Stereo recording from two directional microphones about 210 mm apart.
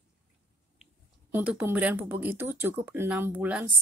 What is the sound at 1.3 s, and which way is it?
Speech, 10° right (ahead or behind).